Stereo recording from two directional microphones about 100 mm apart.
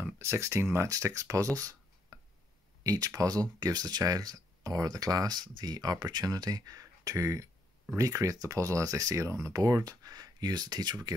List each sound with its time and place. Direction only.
0.0 s speech: 25° right (ahead or behind)
1.6 s a sound: 30° right (ahead or behind)
2.8 s speech: 35° right (ahead or behind)